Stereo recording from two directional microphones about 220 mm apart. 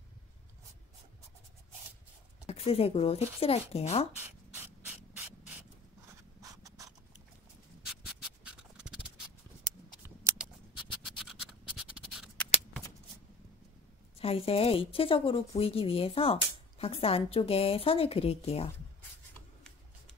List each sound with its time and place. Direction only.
2.4 s a woman's voice: 25° left (ahead or behind)
6.4 s writing: 15° right (ahead or behind)
7.8 s scratch: 5° right (ahead or behind)
10.0 s scissors: 5° right (ahead or behind)
11.1 s scratch: centre (ahead or behind)
14.2 s a woman's voice: 25° left (ahead or behind)